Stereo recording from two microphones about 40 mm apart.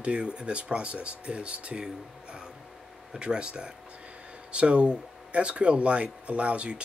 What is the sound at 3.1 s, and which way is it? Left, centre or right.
Speech, right.